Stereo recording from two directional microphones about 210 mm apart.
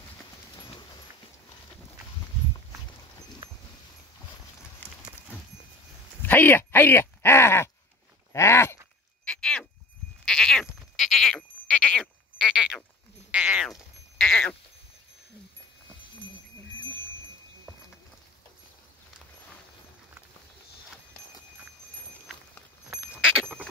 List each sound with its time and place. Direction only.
0.6 s clip-clop: 20° left (ahead or behind)
6.2 s speech: 10° left (ahead or behind)
8.3 s a sound: 15° left (ahead or behind)
10.2 s sheep: 5° left (ahead or behind)
13.3 s bleat: 5° right (ahead or behind)
22.8 s goat: 5° right (ahead or behind)